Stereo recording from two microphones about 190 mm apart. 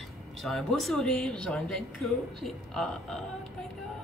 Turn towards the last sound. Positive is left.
turn(degrees=5)  # may be behind; listen again after turning